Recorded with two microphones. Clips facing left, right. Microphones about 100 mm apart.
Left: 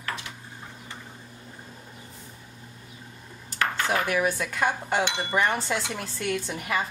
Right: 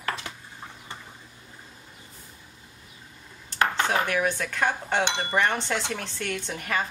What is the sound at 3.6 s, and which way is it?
Dishes, 25° right (ahead or behind).